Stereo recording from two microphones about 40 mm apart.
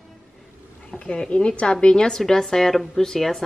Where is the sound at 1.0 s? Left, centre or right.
Left.